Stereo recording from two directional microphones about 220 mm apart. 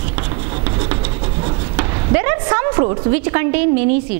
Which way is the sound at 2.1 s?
15° right (ahead or behind).